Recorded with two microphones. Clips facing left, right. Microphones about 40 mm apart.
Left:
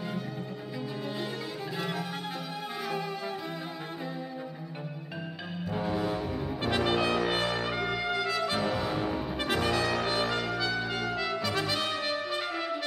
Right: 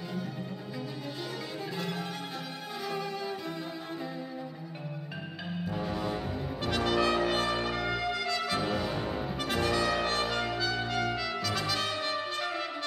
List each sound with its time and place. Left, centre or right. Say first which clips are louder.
1.8 s music: left 3 dB; centre
5.7 s music: left 4 dB; centre
6.6 s brass instrument: even; centre
8.5 s music: left 2 dB; centre
9.4 s brass instrument: even; centre
10.3 s trumpet: left 1 dB; centre
11.4 s brass instrument: left 1 dB; left